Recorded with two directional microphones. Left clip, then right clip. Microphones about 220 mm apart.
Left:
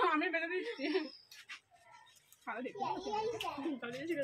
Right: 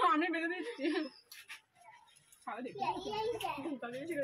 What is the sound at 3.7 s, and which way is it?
Speech, 15° left (ahead or behind).